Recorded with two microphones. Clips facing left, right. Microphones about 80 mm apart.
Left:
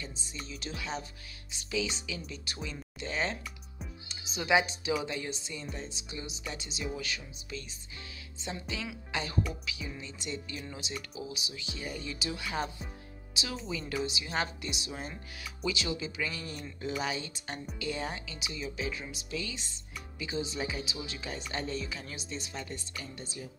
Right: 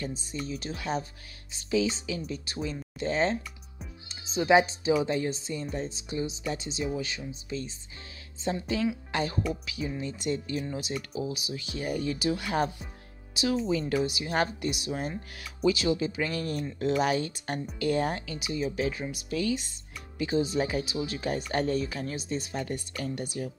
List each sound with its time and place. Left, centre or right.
0.0 s speech: right